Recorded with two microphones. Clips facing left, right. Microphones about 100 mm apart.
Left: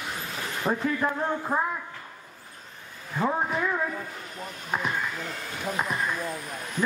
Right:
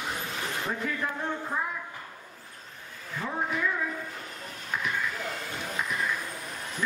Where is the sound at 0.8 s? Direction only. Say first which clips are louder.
Left 5 dB; 40° left (ahead or behind).